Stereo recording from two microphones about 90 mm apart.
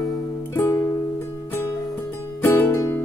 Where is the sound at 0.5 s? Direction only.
30° left (ahead or behind).